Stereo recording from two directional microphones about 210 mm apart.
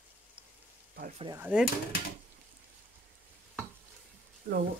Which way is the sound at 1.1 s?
25° right (ahead or behind).